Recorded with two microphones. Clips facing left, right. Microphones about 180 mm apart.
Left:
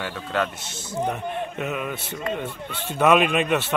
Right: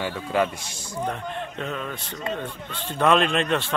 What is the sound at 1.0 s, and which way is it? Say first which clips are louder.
Speech: left 2 dB; 10° left (ahead or behind).